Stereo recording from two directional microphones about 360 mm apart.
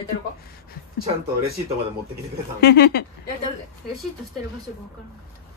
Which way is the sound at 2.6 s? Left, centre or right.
Left.